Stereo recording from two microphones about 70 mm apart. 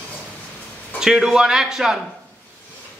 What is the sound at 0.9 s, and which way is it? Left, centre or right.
Speech, centre.